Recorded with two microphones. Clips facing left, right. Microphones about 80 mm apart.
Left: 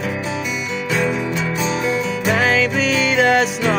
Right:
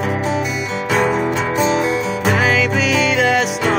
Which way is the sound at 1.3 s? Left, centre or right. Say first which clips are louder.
Right 5 dB; right.